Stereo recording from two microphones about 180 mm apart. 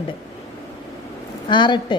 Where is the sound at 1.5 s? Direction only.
25° left (ahead or behind).